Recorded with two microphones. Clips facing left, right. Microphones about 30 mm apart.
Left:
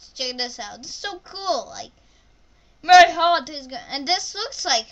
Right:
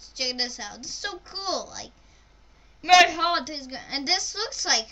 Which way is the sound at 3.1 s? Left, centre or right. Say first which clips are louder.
Left 6 dB; centre.